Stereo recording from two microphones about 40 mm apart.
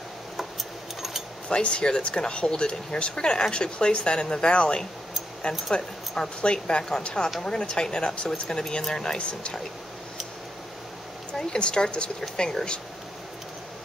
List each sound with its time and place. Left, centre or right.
1.5 s speech: left
11.3 s speech: left